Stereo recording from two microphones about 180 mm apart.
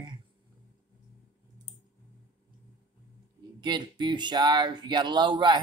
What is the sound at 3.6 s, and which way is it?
Speech, 25° right (ahead or behind).